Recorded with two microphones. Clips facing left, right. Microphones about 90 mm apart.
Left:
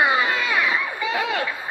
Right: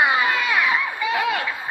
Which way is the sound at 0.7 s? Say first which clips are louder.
Right 1 dB; 30° left (ahead or behind).